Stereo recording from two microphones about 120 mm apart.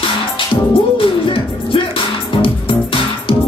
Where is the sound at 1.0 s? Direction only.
45° left (ahead or behind).